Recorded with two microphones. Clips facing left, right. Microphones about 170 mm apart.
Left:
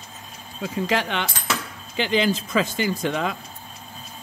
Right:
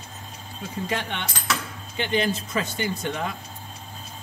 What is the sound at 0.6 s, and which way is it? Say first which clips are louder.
Speech: left 5 dB; 90° left.